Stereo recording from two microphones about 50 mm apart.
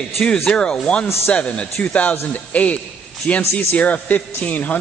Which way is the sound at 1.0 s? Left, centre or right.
Left.